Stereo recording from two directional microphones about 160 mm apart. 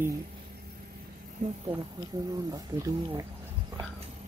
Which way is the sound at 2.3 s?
25° right (ahead or behind).